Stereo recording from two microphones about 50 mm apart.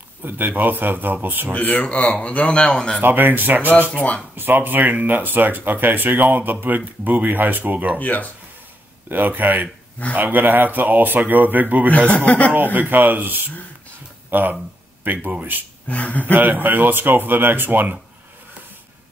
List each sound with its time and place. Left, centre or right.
0.2 s speech: right
1.5 s a man's voice: left; by 3.0 s centre
3.0 s speech: right
8.0 s speech: left
9.1 s speech: right
12.1 s a man's voice: left
12.7 s speech: right
15.9 s speech: left
16.3 s speech: right